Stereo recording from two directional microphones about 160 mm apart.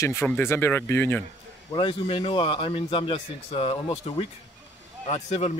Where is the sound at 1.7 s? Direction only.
35° left (ahead or behind).